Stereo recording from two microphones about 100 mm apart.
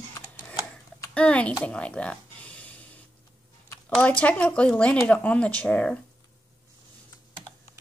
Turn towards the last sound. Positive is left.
turn(degrees=15)  # may be behind; listen again after turning